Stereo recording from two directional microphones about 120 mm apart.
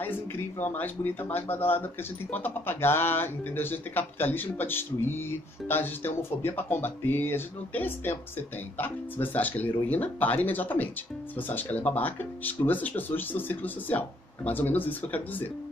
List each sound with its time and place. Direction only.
0.0 s speech: 15° left (ahead or behind)